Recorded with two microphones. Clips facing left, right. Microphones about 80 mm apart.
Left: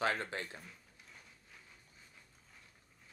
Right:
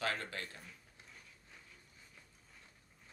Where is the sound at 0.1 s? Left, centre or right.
Left.